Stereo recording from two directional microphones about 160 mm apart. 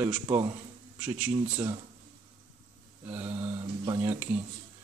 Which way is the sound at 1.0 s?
5° right (ahead or behind).